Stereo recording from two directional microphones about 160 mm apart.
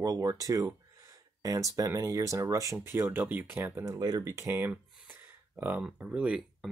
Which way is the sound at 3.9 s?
25° right (ahead or behind).